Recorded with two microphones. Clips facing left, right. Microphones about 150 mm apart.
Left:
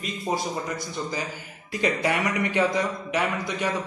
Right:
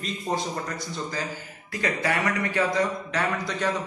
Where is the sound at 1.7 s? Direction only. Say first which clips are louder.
Left 2 dB; 20° left (ahead or behind).